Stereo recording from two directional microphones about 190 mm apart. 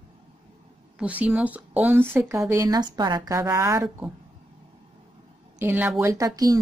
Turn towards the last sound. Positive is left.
turn(degrees=-20)  # may be behind; listen again after turning